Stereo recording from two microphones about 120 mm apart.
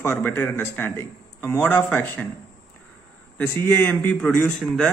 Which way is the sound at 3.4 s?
15° left (ahead or behind).